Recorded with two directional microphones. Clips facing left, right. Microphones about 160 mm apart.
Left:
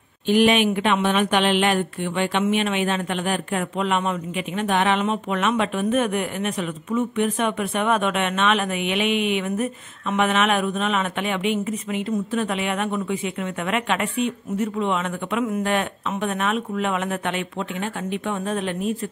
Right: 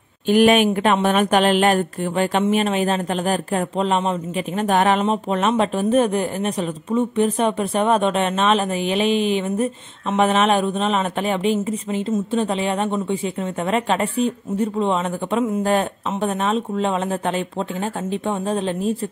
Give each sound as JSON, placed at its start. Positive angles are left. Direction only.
{"t": 0.3, "sound": "speech", "side_deg": -45}